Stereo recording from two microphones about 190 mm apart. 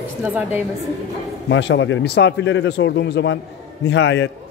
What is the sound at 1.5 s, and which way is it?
Speech, 75° left (ahead or behind).